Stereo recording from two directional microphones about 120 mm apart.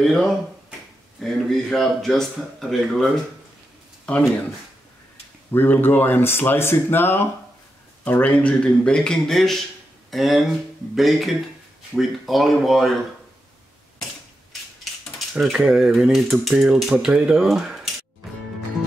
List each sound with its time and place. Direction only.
0.0 s speech: centre (ahead or behind)
4.0 s a sound: 10° left (ahead or behind)
5.5 s speech: 15° left (ahead or behind); by 13.0 s centre (ahead or behind)
15.1 s speech: centre (ahead or behind)